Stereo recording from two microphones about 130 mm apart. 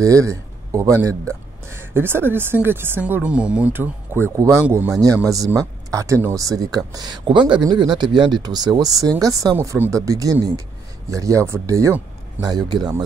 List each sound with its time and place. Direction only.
0.0 s a man's voice: 25° right (ahead or behind)